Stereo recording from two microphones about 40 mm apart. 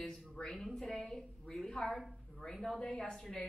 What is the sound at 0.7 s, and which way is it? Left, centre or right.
A woman's voice, centre.